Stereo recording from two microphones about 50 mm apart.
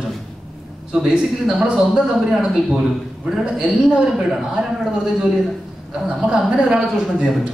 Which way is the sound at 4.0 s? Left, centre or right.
Centre.